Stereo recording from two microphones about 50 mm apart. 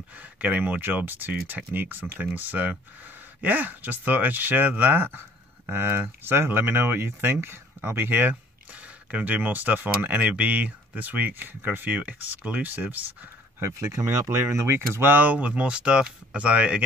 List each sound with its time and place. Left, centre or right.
0.2 s speech: right
9.1 s speech: right
13.6 s speech: right
15.1 s speech: right